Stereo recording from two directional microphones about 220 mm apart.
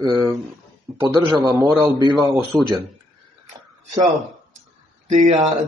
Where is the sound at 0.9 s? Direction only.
10° right (ahead or behind).